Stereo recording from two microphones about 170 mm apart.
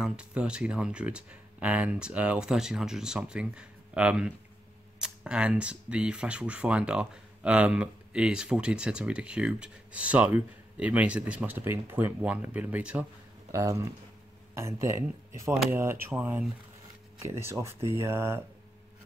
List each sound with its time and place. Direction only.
0.0 s speech: 5° right (ahead or behind)